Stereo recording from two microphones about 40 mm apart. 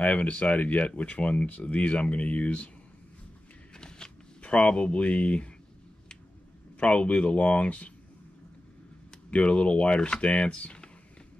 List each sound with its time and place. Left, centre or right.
0.0 s speech: left
3.7 s shuffling cards: centre
4.4 s speech: left
6.8 s speech: left
9.3 s speech: left